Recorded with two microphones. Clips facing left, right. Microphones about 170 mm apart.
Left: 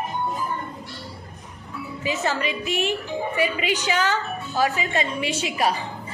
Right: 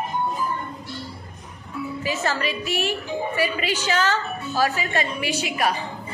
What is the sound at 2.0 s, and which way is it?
A woman's voice, 20° left (ahead or behind).